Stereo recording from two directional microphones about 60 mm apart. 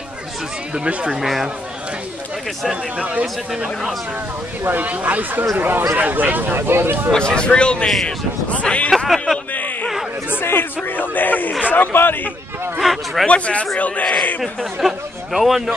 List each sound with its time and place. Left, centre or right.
0.7 s speech: centre
1.2 s speech: centre
3.0 s speech: right
3.5 s speech: centre
4.6 s speech: right
7.1 s speech: centre
8.9 s a sound: centre
9.5 s a sound: left
10.3 s a man's voice: left
12.8 s speech: centre
13.3 s speech: centre
14.4 s speech: centre